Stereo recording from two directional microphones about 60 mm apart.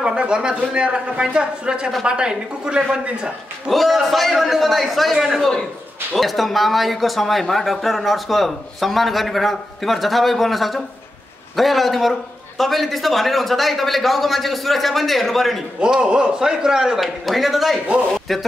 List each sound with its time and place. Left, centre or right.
0.0 s a man's voice: centre
3.6 s speech: centre
15.8 s a man's voice: centre